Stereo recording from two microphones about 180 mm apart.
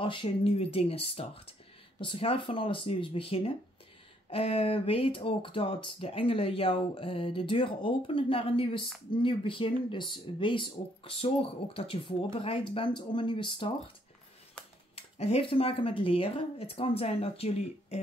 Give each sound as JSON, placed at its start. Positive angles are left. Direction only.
{"t": 0.0, "sound": "speech", "side_deg": 30}
{"t": 15.0, "sound": "speech", "side_deg": 35}